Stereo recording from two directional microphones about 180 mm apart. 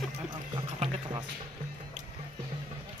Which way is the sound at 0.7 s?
35° right (ahead or behind).